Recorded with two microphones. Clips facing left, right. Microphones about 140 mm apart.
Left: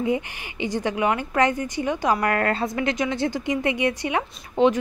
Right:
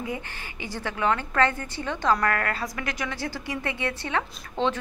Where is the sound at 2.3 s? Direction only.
25° left (ahead or behind).